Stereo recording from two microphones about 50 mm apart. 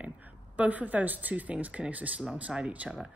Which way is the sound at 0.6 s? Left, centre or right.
Right.